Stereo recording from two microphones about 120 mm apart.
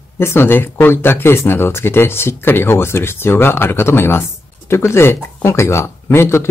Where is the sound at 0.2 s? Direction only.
20° left (ahead or behind).